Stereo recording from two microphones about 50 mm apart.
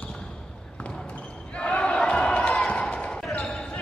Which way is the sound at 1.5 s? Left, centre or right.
Left.